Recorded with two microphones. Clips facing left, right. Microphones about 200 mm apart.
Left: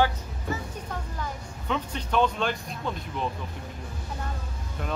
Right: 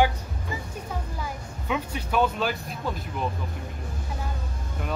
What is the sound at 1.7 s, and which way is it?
Speech, 10° right (ahead or behind).